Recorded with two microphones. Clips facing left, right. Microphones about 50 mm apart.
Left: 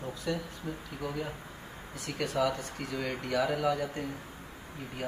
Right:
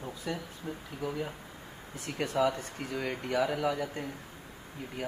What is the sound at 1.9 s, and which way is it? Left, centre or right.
Speech, right.